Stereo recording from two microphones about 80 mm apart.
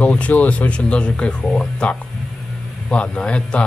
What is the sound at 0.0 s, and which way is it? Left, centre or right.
Speech, centre.